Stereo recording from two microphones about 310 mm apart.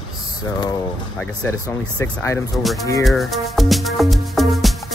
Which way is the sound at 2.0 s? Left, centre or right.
Centre.